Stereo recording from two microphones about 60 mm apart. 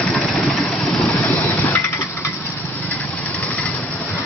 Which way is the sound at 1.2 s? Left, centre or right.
Left.